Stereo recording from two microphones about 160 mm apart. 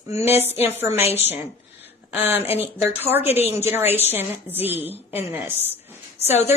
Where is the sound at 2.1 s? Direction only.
10° right (ahead or behind).